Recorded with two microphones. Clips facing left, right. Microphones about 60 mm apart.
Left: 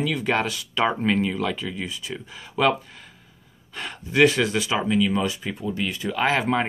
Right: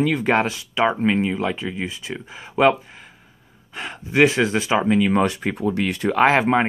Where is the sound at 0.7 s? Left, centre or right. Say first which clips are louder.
Right 3 dB; centre.